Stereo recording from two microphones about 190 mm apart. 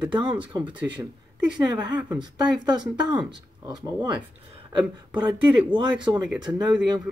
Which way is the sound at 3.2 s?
20° right (ahead or behind).